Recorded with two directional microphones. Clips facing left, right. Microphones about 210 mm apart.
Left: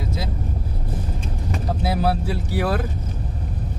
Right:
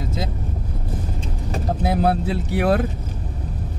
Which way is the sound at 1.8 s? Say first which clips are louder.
Right 3 dB; 50° right (ahead or behind).